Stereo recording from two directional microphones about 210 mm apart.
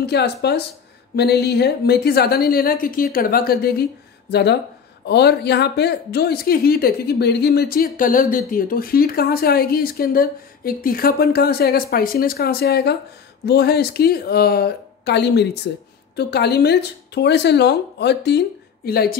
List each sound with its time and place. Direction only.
0.0 s speech: 50° left (ahead or behind)